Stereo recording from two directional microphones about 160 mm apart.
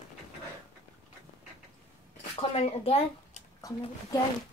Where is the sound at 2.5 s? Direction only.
40° left (ahead or behind).